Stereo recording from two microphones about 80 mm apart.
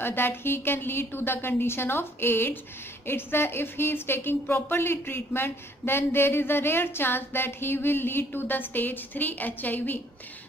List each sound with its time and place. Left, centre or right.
0.0 s a woman's voice: left